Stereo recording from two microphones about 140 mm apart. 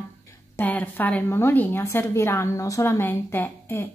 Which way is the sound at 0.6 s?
15° left (ahead or behind).